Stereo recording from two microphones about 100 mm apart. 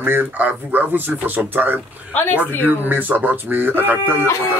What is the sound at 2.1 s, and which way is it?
Speech, 20° left (ahead or behind).